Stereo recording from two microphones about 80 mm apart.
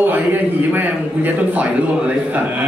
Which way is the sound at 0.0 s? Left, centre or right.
Right.